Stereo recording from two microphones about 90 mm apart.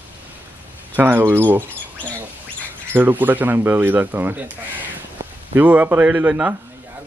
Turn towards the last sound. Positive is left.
turn(degrees=-15)  # may be behind; listen again after turning